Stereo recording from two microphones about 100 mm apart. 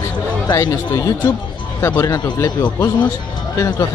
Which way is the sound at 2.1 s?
45° left (ahead or behind).